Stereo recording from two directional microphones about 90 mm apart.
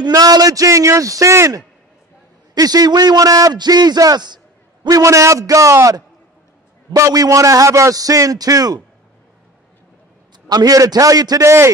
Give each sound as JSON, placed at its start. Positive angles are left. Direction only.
{"t": 0.0, "sound": "a man's voice", "side_deg": -45}
{"t": 2.5, "sound": "a man's voice", "side_deg": -45}
{"t": 4.8, "sound": "a man's voice", "side_deg": -40}
{"t": 7.0, "sound": "a man's voice", "side_deg": -40}
{"t": 10.5, "sound": "a man's voice", "side_deg": -45}